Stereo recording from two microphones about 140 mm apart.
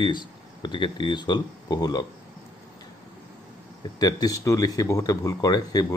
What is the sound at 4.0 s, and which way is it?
Speech, 30° left (ahead or behind).